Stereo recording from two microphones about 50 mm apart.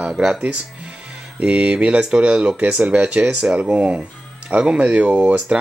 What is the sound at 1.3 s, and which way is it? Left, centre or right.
Speech, right.